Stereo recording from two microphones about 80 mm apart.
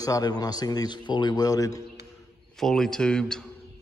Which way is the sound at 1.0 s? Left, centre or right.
Left.